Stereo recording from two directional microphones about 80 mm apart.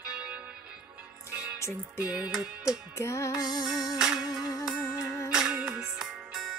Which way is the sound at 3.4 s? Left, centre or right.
Left.